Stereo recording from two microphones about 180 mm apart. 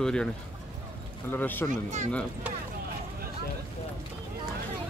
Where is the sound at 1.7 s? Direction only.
40° right (ahead or behind).